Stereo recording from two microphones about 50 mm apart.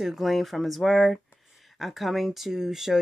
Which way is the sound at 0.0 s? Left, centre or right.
Centre.